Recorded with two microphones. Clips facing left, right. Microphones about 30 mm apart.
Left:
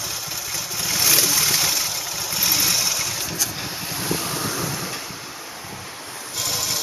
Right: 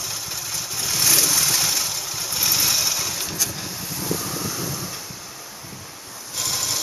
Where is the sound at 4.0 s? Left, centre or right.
Left.